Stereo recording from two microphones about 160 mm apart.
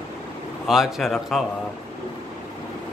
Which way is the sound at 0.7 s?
Centre (ahead or behind).